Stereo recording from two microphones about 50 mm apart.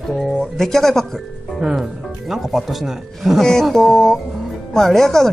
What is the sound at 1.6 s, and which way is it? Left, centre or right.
Speech, centre.